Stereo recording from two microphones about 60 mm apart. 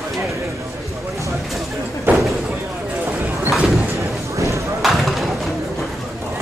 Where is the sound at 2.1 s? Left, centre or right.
Right.